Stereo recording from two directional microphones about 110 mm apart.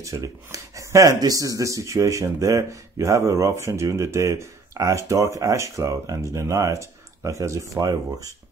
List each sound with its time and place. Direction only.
0.0 s speech: 30° right (ahead or behind)